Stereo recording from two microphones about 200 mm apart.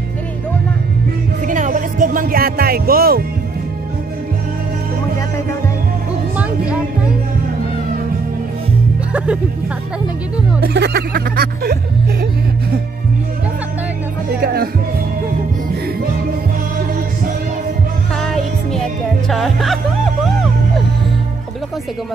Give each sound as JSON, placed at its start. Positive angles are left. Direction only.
{"t": 1.5, "sound": "music", "side_deg": -40}
{"t": 6.3, "sound": "music", "side_deg": -5}
{"t": 9.1, "sound": "music", "side_deg": -5}
{"t": 10.6, "sound": "speech", "side_deg": -55}
{"t": 14.4, "sound": "music", "side_deg": -50}
{"t": 18.1, "sound": "music", "side_deg": 0}